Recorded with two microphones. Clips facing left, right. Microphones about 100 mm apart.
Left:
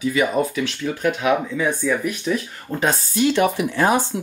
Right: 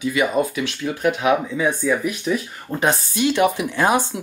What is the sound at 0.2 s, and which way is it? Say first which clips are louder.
Speech: right 1 dB; 15° right (ahead or behind).